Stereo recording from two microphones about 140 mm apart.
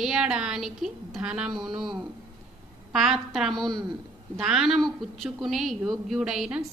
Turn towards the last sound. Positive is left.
turn(degrees=-5)  # may be behind; listen again after turning